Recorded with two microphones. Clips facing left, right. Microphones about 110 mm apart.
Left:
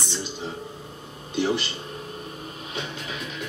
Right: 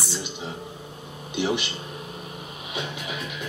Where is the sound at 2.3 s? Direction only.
10° right (ahead or behind).